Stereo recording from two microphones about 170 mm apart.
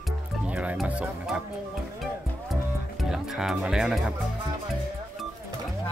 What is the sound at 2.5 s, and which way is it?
Music, centre (ahead or behind).